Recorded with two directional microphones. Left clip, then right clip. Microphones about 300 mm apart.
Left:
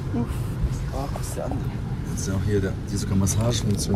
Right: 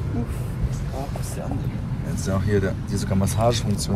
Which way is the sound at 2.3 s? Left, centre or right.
Centre.